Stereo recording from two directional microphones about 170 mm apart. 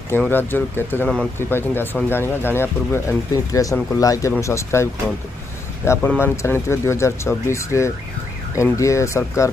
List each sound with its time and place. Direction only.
0.2 s speech: 10° left (ahead or behind)
5.9 s speech: 15° left (ahead or behind)